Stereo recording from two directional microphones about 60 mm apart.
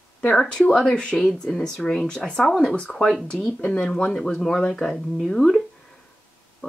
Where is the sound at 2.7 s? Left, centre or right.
Centre.